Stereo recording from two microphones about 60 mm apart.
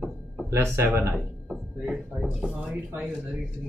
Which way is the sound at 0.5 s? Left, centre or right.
Right.